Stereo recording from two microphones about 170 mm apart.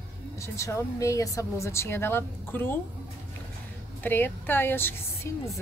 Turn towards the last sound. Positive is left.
turn(degrees=15)  # may be behind; listen again after turning